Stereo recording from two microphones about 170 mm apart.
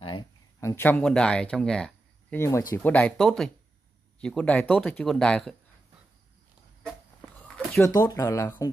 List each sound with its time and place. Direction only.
0.6 s speech: 15° left (ahead or behind)
7.2 s a sound: 5° left (ahead or behind)
7.9 s speech: 20° left (ahead or behind)